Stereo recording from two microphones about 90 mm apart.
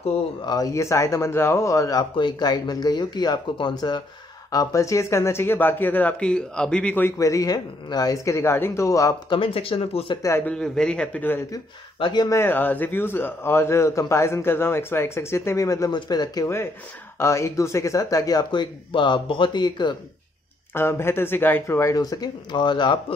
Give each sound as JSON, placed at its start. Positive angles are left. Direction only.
{"t": 0.5, "sound": "speech", "side_deg": 40}
{"t": 2.1, "sound": "speech", "side_deg": 55}
{"t": 4.5, "sound": "a man's voice", "side_deg": 40}
{"t": 7.1, "sound": "speech", "side_deg": 35}
{"t": 9.3, "sound": "speech", "side_deg": 85}
{"t": 10.4, "sound": "a man's voice", "side_deg": 10}
{"t": 12.0, "sound": "speech", "side_deg": 55}
{"t": 12.3, "sound": "a man's voice", "side_deg": 25}
{"t": 15.9, "sound": "speech", "side_deg": 50}
{"t": 17.2, "sound": "speech", "side_deg": 30}
{"t": 18.5, "sound": "speech", "side_deg": 65}
{"t": 20.7, "sound": "a man's voice", "side_deg": 25}
{"t": 21.9, "sound": "speech", "side_deg": 45}